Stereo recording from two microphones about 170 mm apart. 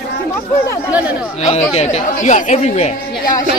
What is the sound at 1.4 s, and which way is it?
Speech, 40° left (ahead or behind).